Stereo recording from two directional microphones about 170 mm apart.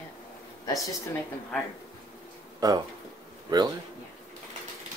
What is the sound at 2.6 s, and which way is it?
Speech, 20° right (ahead or behind).